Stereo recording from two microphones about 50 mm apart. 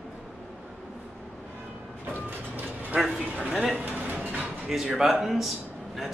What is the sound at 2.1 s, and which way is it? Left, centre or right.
Sliding door, right.